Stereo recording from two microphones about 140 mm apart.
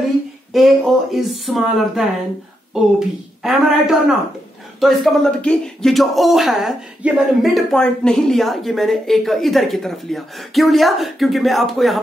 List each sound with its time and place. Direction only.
0.5 s speech: centre (ahead or behind)